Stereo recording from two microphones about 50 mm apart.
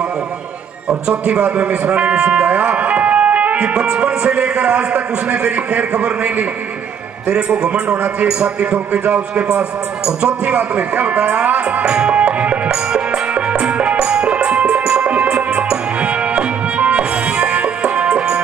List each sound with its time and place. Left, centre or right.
0.8 s a man's voice: centre
11.8 s music: right